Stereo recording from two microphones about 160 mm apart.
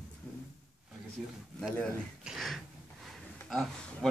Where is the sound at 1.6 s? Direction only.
Centre (ahead or behind).